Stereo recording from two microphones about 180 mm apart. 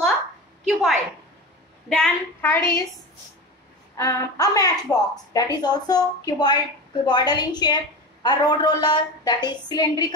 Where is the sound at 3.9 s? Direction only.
20° left (ahead or behind).